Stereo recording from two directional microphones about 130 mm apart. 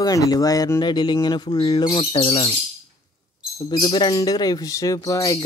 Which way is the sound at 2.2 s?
45° left (ahead or behind).